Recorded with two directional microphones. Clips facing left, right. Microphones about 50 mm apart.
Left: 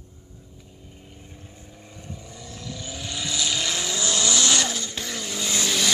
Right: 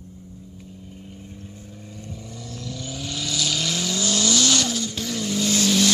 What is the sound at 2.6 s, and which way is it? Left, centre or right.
Vehicle, centre.